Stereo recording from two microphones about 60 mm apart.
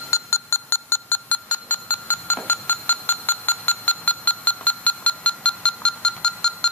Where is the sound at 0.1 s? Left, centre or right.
Left.